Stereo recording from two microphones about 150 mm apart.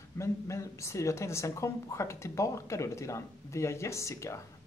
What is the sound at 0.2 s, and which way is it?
Speech, 20° left (ahead or behind).